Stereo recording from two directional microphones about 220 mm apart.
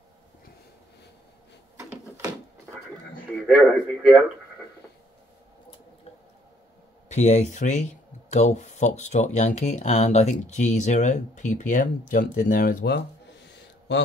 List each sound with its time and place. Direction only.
3.4 s speech: centre (ahead or behind)
7.1 s speech: 30° left (ahead or behind); by 14.0 s 50° left (ahead or behind)